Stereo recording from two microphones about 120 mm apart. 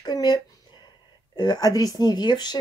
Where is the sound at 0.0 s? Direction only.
35° left (ahead or behind).